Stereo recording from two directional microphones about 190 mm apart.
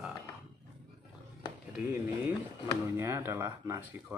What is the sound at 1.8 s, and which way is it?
Speech, 10° right (ahead or behind).